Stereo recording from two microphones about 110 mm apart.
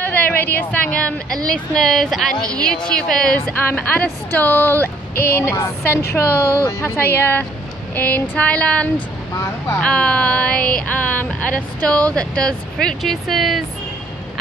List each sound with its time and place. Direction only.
0.0 s speech: 15° left (ahead or behind); by 13.7 s centre (ahead or behind)